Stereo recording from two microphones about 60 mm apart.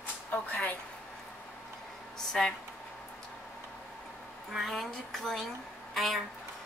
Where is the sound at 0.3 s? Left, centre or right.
Left.